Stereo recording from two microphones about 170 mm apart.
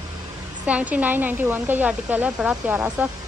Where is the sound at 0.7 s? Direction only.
10° right (ahead or behind).